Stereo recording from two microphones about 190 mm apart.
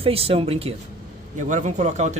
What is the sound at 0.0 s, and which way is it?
Speech, 30° right (ahead or behind).